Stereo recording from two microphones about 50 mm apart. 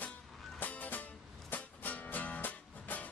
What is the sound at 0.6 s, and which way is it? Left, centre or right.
Music, left.